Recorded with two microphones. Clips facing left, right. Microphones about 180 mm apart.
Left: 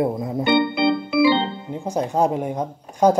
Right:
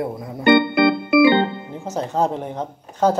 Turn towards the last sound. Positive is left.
turn(degrees=10)  # may be behind; listen again after turning